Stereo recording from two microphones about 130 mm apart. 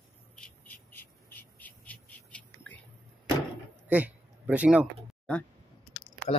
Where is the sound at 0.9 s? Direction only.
15° left (ahead or behind).